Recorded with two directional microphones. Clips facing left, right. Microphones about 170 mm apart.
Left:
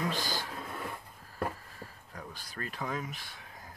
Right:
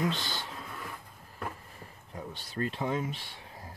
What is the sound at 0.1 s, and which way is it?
Speech, 25° right (ahead or behind).